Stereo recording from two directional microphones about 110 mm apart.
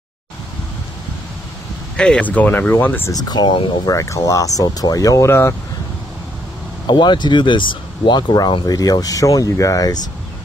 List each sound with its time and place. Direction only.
2.0 s speech: 10° left (ahead or behind)
3.1 s speech: 35° left (ahead or behind)
3.8 s speech: 30° left (ahead or behind)
6.9 s speech: 45° left (ahead or behind)